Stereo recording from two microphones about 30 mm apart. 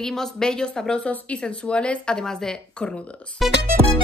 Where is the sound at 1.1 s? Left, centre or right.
Left.